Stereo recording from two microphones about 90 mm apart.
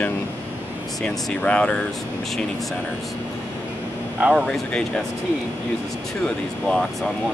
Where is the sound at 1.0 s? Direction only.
15° left (ahead or behind).